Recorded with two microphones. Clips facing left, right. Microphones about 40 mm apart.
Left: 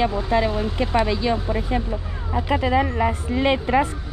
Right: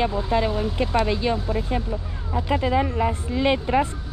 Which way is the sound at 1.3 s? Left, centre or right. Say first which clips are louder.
Left 2 dB; left.